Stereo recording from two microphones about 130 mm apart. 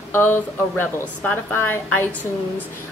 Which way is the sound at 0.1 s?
15° left (ahead or behind).